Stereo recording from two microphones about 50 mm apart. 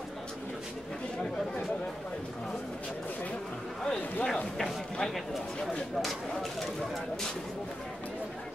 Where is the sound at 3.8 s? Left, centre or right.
Centre.